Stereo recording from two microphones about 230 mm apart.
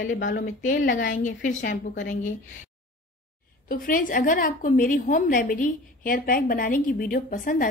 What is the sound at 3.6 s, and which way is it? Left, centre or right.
A woman's voice, left.